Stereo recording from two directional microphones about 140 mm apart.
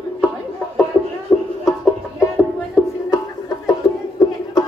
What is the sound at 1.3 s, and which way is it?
Banjo, 20° left (ahead or behind).